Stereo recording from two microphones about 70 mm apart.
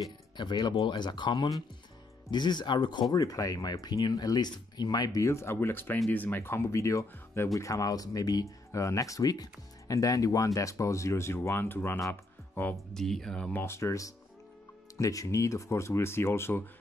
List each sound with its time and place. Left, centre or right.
0.4 s speech: left
12.1 s music: left
12.9 s speech: centre
13.5 s speech: left